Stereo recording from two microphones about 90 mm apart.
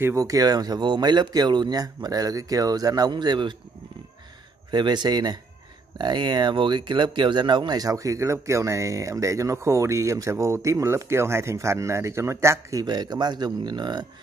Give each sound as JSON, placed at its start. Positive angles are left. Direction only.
{"t": 0.1, "sound": "speech", "side_deg": -40}
{"t": 4.6, "sound": "speech", "side_deg": -55}
{"t": 12.8, "sound": "speech", "side_deg": -50}